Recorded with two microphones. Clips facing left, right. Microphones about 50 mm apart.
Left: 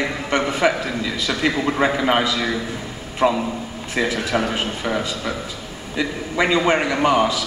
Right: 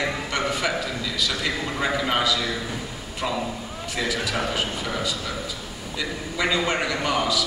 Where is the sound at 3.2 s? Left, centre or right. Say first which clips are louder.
Left 8 dB; left.